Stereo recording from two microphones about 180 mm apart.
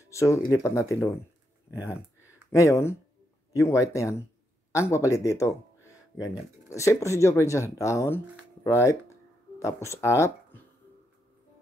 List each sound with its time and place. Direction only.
0.1 s speech: 15° left (ahead or behind)
2.5 s speech: 15° left (ahead or behind)